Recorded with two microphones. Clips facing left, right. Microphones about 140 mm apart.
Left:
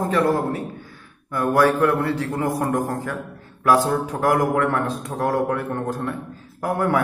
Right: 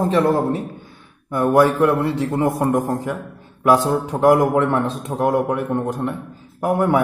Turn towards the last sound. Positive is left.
turn(degrees=-20)  # may be behind; listen again after turning